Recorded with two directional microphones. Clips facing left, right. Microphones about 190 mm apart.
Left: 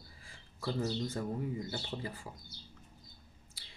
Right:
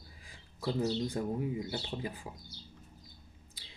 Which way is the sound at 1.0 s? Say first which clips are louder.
Right 3 dB; 15° right (ahead or behind).